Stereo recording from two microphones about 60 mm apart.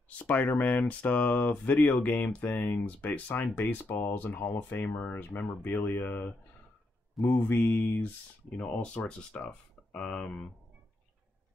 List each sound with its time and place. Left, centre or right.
0.2 s speech: left